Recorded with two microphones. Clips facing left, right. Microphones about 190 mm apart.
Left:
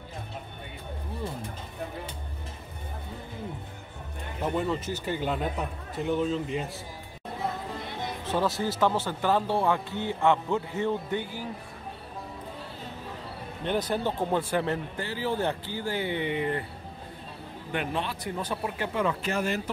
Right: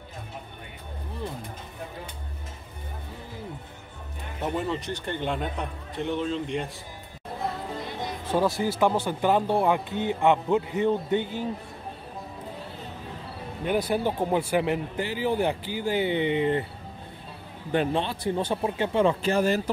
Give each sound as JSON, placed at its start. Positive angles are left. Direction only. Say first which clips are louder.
{"t": 4.4, "sound": "a man's voice", "louder": "even", "side_deg": 0}
{"t": 8.3, "sound": "speech", "louder": "right 3 dB", "side_deg": -10}
{"t": 13.7, "sound": "speech", "louder": "right 3 dB", "side_deg": -10}
{"t": 17.7, "sound": "speech", "louder": "right 6 dB", "side_deg": -30}